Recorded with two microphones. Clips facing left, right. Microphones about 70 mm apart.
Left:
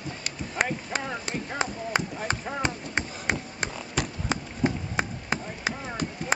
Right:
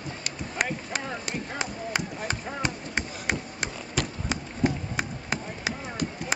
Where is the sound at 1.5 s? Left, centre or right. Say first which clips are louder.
Left 4 dB; left.